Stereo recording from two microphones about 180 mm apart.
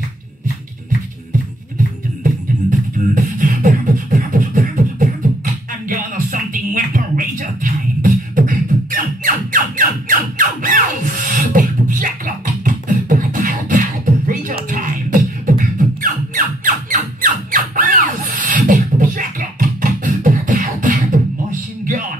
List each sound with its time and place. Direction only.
2.2 s beatboxing: 50° right (ahead or behind)
11.2 s music: 50° right (ahead or behind)